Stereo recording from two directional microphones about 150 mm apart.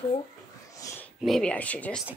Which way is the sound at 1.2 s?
Centre (ahead or behind).